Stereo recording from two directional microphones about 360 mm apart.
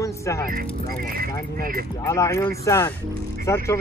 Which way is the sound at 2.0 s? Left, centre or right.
Centre.